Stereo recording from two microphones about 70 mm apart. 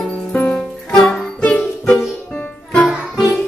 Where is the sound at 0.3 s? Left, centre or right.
Left.